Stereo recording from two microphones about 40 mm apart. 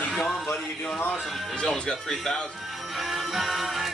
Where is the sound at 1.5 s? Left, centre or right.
Left.